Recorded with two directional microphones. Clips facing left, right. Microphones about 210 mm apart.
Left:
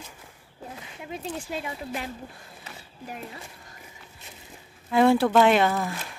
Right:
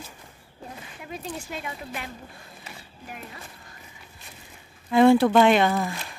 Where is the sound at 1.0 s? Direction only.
25° left (ahead or behind).